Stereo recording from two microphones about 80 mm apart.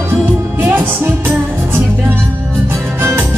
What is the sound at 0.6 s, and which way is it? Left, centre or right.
Music, right.